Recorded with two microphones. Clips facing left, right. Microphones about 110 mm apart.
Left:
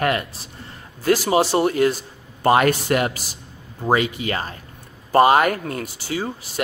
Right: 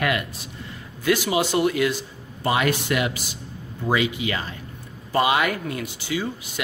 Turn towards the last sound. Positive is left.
turn(degrees=40)  # may be behind; listen again after turning